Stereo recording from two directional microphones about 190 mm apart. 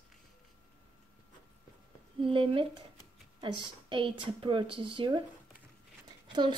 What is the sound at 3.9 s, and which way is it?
A woman's voice, 25° right (ahead or behind).